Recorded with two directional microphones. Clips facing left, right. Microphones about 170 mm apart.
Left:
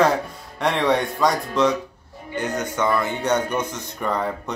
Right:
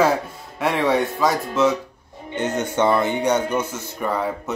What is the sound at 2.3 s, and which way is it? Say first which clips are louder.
Speech: right 3 dB; 25° right (ahead or behind).